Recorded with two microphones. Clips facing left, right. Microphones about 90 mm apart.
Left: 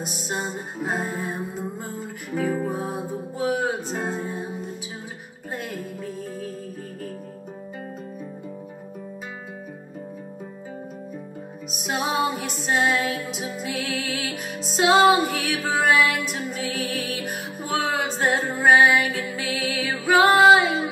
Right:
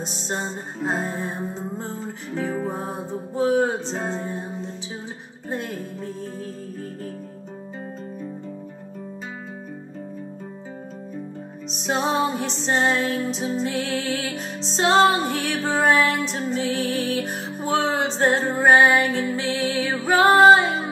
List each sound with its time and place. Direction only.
0.0 s music: 30° right (ahead or behind)
0.5 s music: 10° left (ahead or behind)
0.9 s music: 30° right (ahead or behind)
2.3 s music: 10° left (ahead or behind)
3.3 s music: 35° right (ahead or behind)
4.1 s music: 10° left (ahead or behind)
5.6 s music: 30° right (ahead or behind)
12.0 s music: 5° left (ahead or behind)
12.6 s music: 30° right (ahead or behind)
14.9 s music: 10° left (ahead or behind)
15.2 s music: 35° right (ahead or behind)
20.0 s music: 40° right (ahead or behind)